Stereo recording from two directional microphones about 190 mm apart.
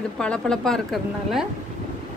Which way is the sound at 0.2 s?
5° left (ahead or behind).